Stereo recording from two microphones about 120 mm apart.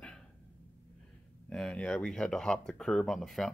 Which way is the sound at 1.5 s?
10° left (ahead or behind).